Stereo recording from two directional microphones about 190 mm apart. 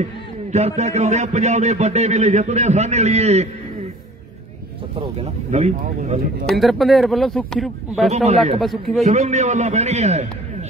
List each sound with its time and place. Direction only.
0.0 s a man's voice: 35° right (ahead or behind)
5.2 s a man's voice: 35° right (ahead or behind)
6.4 s speech: centre (ahead or behind)
8.1 s a man's voice: 35° right (ahead or behind)
8.5 s speech: centre (ahead or behind)
9.0 s a man's voice: 35° right (ahead or behind)